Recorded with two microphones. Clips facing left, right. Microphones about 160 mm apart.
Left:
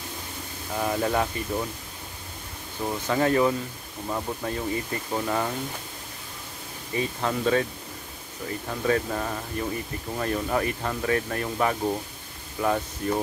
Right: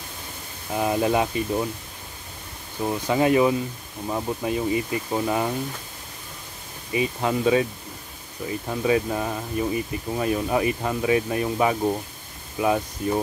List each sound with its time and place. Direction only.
0.7 s speech: 15° right (ahead or behind)
2.8 s speech: 15° right (ahead or behind)
6.9 s speech: 10° right (ahead or behind)